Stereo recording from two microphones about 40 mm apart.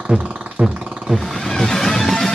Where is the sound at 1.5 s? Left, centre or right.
Centre.